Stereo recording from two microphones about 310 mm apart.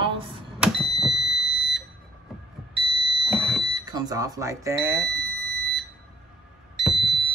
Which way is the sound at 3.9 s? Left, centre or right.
Centre.